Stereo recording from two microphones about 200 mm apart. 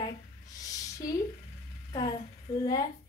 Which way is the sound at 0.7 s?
15° left (ahead or behind).